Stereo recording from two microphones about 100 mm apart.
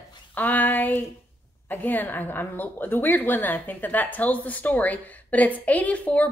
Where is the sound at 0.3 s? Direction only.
15° left (ahead or behind).